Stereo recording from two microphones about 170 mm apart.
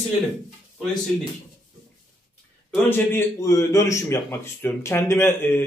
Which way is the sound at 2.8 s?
10° left (ahead or behind).